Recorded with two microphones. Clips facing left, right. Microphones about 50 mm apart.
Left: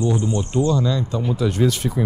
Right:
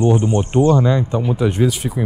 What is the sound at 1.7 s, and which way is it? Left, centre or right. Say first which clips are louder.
Speech: even; centre.